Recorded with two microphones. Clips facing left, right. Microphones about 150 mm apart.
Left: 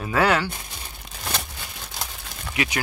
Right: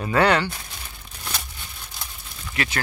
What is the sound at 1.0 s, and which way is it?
Crumpling, 85° left.